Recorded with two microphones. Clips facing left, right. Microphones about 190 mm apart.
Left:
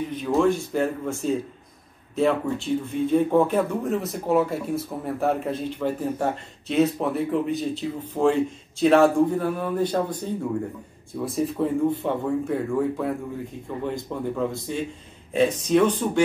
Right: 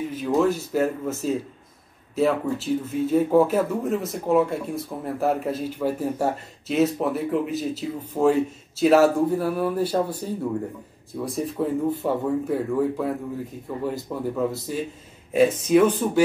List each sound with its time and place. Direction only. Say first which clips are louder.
0.1 s speech: left 1 dB; 5° right (ahead or behind)